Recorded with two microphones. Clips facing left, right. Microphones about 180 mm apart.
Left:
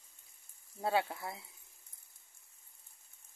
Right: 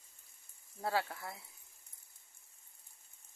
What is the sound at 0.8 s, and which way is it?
Speech, 20° left (ahead or behind).